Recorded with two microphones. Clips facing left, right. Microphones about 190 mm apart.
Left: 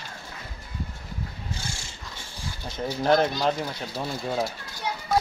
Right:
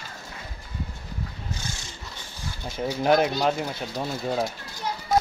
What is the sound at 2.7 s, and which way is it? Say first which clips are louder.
Speech: right 1 dB; 10° right (ahead or behind).